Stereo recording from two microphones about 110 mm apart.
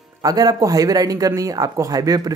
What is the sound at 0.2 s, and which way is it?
A man's voice, 35° right (ahead or behind).